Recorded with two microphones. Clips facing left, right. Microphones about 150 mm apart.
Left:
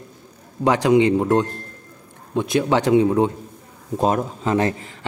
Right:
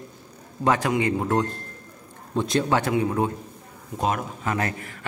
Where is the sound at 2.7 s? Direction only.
20° left (ahead or behind).